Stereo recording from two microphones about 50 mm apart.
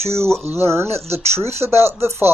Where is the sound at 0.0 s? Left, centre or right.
Right.